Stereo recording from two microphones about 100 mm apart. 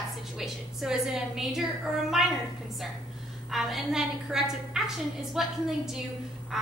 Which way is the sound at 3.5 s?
Centre (ahead or behind).